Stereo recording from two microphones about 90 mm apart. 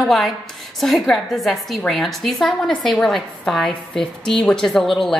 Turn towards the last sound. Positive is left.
turn(degrees=5)  # may be behind; listen again after turning